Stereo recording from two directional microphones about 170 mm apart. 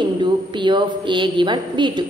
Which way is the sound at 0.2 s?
25° right (ahead or behind).